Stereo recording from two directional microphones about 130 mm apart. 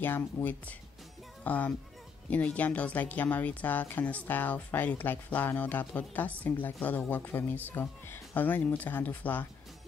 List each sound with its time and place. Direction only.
0.0 s speech: 15° left (ahead or behind)